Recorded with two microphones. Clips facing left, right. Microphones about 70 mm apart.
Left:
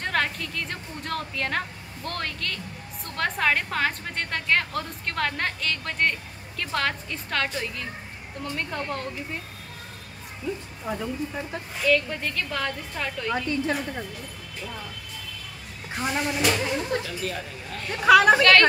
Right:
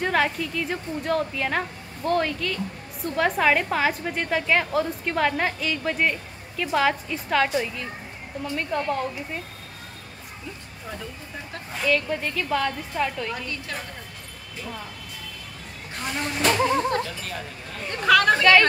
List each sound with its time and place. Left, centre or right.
0.0 s a woman's voice: centre
11.8 s a woman's voice: centre
13.3 s a woman's voice: left
16.0 s speech: centre
16.5 s music: right
16.9 s speech: centre
18.0 s speech: centre
18.4 s a woman's voice: centre